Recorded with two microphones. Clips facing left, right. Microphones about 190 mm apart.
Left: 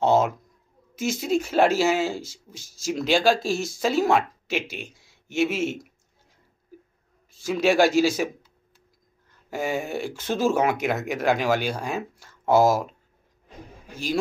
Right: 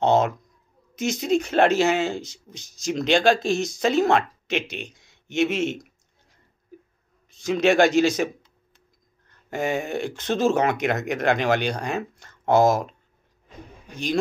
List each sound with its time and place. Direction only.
0.0 s a sound: 5° left (ahead or behind)
0.9 s speech: 5° left (ahead or behind)
3.5 s speech: 20° right (ahead or behind)
3.8 s speech: 10° left (ahead or behind)
7.4 s speech: 5° left (ahead or behind)
9.5 s a man's voice: 5° left (ahead or behind)